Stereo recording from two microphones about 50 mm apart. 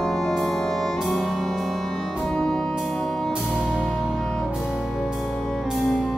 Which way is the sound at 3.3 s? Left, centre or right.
Centre.